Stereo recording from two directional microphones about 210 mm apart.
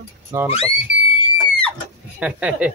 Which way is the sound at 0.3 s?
15° right (ahead or behind).